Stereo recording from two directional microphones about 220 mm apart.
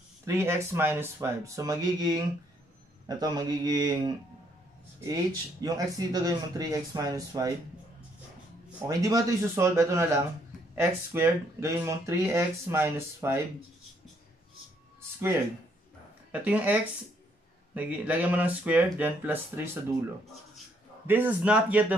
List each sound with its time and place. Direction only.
0.3 s speech: 10° right (ahead or behind)
8.8 s speech: 15° right (ahead or behind)
16.3 s speech: 5° right (ahead or behind)
21.1 s speech: 10° right (ahead or behind)